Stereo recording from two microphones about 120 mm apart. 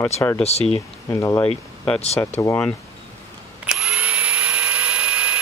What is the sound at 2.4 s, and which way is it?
Speech, 25° left (ahead or behind).